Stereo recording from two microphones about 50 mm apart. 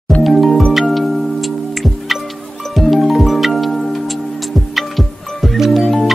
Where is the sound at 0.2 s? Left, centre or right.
Centre.